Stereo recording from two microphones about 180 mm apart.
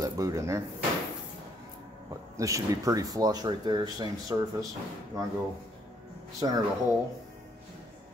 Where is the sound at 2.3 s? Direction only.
15° right (ahead or behind).